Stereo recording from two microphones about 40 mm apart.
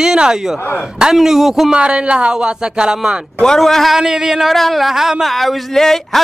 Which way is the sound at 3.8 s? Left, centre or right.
Centre.